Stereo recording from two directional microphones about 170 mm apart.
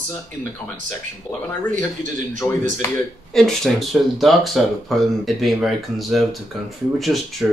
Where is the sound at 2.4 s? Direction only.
20° left (ahead or behind).